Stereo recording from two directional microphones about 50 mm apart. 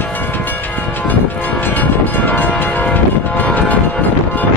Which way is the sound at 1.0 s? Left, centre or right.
Left.